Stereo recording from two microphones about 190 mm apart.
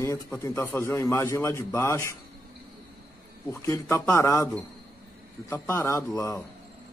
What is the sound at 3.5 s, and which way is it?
A man's voice, 15° left (ahead or behind).